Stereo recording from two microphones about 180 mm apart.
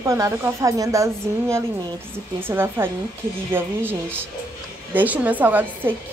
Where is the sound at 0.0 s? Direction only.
15° right (ahead or behind).